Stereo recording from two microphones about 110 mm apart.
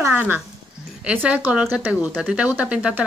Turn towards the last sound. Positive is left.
turn(degrees=-10)  # may be behind; listen again after turning